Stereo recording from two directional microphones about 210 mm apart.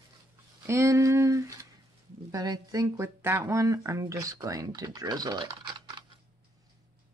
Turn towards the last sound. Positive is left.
turn(degrees=-20)  # may be behind; listen again after turning